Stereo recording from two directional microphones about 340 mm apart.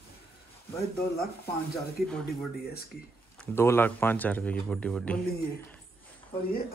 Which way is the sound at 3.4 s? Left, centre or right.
Centre.